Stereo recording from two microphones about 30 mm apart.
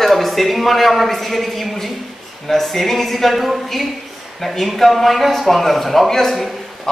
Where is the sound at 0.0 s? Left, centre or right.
Centre.